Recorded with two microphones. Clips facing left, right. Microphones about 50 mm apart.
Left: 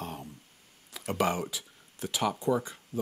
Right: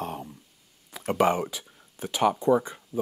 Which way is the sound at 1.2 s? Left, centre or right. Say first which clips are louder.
Right 6 dB; centre.